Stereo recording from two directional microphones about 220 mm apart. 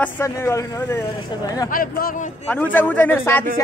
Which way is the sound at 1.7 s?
40° left (ahead or behind).